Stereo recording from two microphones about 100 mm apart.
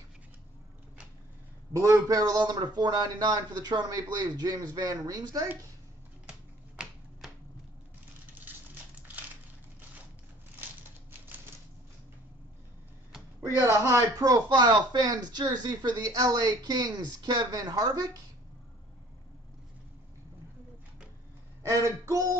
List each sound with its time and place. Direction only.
1.7 s speech: 30° right (ahead or behind)
8.4 s a sound: 20° right (ahead or behind)
11.1 s typewriter: 20° right (ahead or behind)
13.6 s speech: 25° right (ahead or behind)
21.6 s speech: 30° right (ahead or behind)